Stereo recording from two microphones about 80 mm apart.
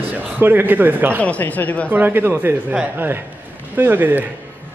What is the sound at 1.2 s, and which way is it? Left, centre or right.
Speech, centre.